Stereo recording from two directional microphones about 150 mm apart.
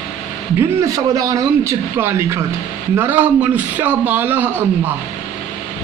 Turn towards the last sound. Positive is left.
turn(degrees=-15)  # may be behind; listen again after turning